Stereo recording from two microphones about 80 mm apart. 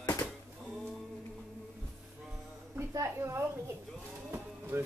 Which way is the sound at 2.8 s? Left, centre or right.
Right.